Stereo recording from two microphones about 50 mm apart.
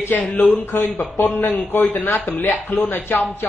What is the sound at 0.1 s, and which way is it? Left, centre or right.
Speech, left.